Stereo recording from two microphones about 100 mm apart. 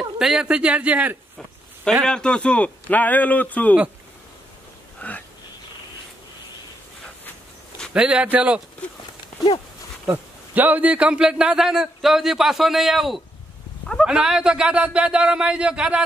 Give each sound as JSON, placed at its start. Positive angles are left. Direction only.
{"t": 0.2, "sound": "speech", "side_deg": -5}
{"t": 2.0, "sound": "a man's voice", "side_deg": 10}
{"t": 5.0, "sound": "a man's voice", "side_deg": 15}
{"t": 7.9, "sound": "speech", "side_deg": -10}
{"t": 10.0, "sound": "a man's voice", "side_deg": -15}